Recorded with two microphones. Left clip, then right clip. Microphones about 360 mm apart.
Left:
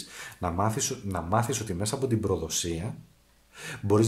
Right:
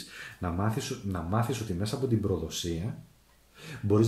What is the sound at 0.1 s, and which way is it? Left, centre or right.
Speech, centre.